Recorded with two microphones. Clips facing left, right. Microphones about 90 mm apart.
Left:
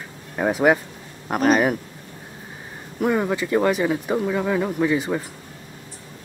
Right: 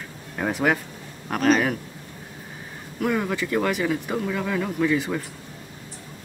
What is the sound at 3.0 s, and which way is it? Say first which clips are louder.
Speech: left 3 dB; 20° left (ahead or behind).